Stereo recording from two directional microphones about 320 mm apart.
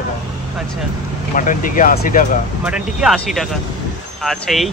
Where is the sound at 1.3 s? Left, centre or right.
Left.